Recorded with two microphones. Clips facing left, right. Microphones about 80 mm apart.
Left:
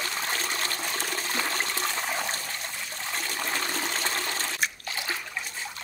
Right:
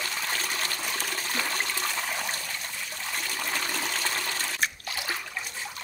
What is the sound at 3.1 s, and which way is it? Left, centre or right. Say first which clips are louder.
Water: left 1 dB; left.